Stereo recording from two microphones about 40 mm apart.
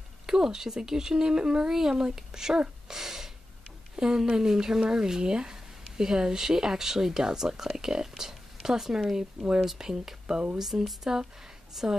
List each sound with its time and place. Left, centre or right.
0.3 s speech: centre
2.9 s a sound: centre
3.9 s speech: centre